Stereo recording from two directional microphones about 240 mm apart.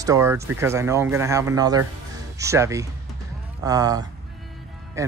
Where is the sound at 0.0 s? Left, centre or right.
Centre.